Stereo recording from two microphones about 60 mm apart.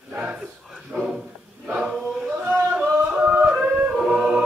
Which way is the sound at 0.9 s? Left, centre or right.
Centre.